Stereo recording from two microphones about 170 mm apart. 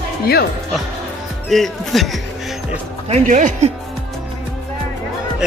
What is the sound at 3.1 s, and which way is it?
Speech, 45° right (ahead or behind).